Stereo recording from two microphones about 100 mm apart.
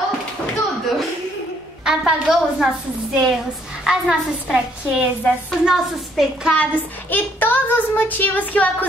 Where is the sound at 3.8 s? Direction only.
5° right (ahead or behind).